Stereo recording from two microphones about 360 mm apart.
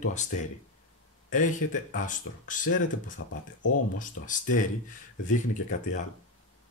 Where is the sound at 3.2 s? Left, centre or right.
Left.